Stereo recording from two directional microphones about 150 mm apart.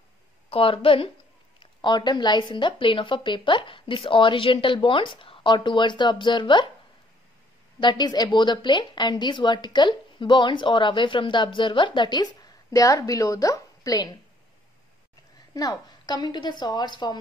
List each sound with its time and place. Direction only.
0.5 s a woman's voice: 35° left (ahead or behind)
7.8 s a woman's voice: 30° left (ahead or behind)
15.5 s a woman's voice: 25° left (ahead or behind)